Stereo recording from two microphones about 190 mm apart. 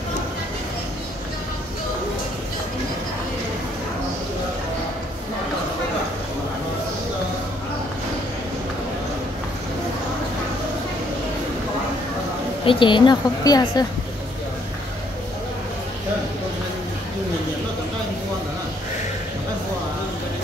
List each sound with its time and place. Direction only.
12.6 s a woman's voice: 25° left (ahead or behind)